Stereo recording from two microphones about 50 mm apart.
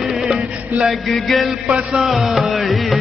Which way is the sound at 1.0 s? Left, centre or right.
Centre.